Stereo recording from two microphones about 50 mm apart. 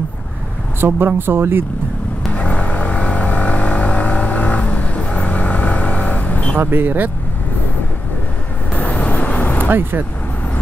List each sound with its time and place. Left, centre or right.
0.7 s speech: right
2.3 s vehicle: left
6.6 s speech: right
8.7 s vehicle: left
9.7 s speech: right